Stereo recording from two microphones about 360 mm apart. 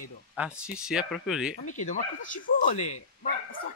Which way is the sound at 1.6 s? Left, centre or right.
Left.